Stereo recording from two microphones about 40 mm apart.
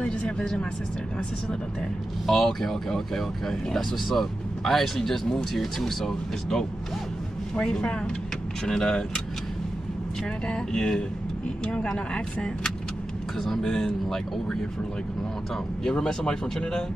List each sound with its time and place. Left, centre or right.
0.0 s speech: left
2.2 s speech: centre
7.5 s speech: left
10.4 s speech: centre
13.4 s speech: centre